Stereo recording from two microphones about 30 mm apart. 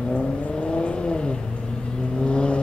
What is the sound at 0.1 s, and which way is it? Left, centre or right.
Vehicle, left.